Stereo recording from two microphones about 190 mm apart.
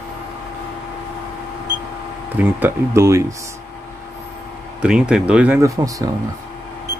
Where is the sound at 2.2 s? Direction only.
10° right (ahead or behind).